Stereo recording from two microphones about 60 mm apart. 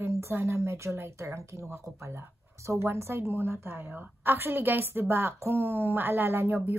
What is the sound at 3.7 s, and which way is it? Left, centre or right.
A woman's voice, right.